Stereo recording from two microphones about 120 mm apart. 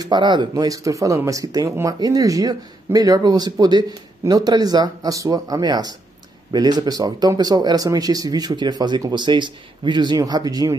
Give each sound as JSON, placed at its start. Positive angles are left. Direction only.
{"t": 0.0, "sound": "speech", "side_deg": -40}